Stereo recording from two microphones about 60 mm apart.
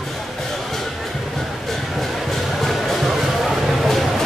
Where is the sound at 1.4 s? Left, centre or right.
Centre.